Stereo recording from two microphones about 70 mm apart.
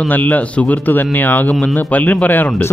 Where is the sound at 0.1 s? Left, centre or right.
Left.